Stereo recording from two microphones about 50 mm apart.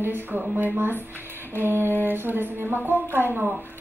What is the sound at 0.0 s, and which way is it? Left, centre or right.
Music, right.